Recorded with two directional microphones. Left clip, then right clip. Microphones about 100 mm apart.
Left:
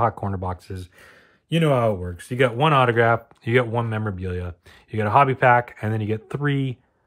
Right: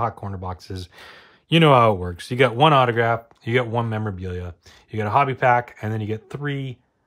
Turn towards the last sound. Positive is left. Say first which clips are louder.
# left 4 dB
turn(degrees=5)  # may be behind; listen again after turning